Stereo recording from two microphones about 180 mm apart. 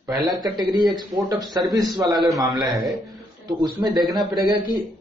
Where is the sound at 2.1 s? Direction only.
Centre (ahead or behind).